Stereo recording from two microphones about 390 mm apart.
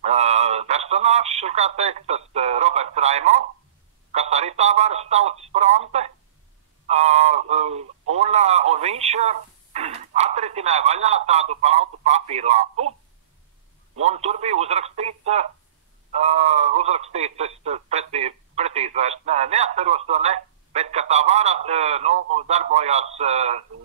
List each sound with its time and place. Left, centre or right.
0.0 s radio: centre
4.1 s speech: centre
6.9 s a sound: centre
8.1 s radio: centre
11.6 s speech: centre
13.9 s speech: centre